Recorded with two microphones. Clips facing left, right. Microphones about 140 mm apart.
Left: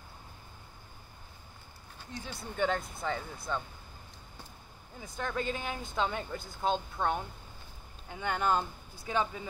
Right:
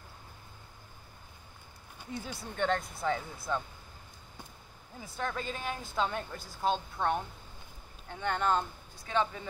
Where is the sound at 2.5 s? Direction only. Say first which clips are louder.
Even; 5° left (ahead or behind).